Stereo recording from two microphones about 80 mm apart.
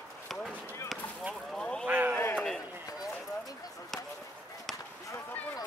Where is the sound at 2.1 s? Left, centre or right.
Left.